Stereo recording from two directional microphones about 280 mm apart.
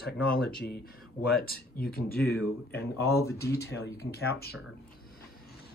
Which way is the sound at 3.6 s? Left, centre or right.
Left.